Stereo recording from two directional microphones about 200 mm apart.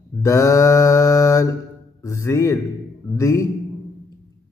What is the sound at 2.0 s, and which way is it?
Speech, 15° left (ahead or behind).